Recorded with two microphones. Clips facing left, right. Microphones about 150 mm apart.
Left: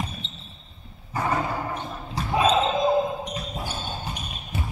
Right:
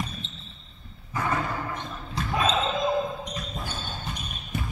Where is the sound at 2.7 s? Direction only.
30° left (ahead or behind).